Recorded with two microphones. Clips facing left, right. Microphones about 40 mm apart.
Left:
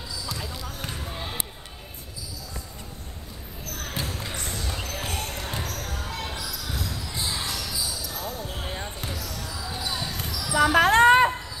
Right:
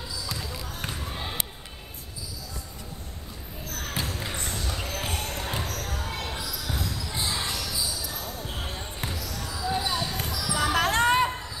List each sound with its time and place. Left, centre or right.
0.7 s basketball bounce: centre
3.9 s basketball bounce: centre
8.6 s basketball bounce: centre
9.2 s basketball bounce: centre
9.7 s basketball bounce: centre
10.5 s basketball bounce: left
11.1 s a sound: centre